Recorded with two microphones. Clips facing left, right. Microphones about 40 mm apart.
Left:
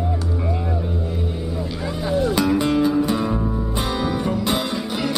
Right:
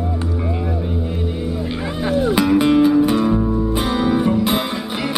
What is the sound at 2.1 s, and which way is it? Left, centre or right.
Music, centre.